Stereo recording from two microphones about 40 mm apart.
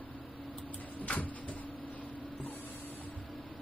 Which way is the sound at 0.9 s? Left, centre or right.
Left.